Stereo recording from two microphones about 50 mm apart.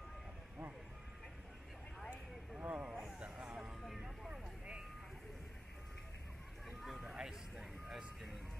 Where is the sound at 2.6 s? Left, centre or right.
Right.